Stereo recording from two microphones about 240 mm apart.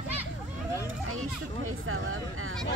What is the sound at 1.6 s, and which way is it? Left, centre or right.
Speech, right.